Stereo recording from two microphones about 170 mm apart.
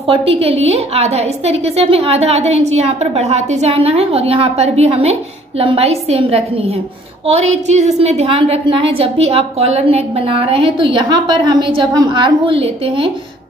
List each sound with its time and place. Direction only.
0.0 s a woman's voice: 35° right (ahead or behind)